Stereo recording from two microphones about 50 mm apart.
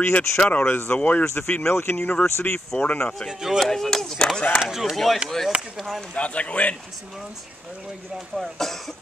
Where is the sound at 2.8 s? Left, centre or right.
Left.